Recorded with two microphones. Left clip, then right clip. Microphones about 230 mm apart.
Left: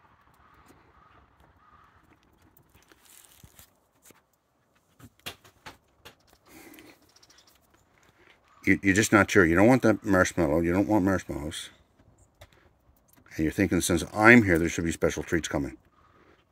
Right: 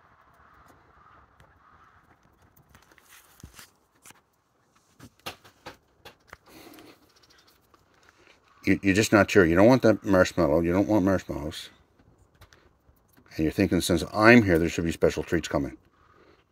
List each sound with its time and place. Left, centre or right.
3.4 s walk: centre
8.5 s speech: centre
13.2 s speech: centre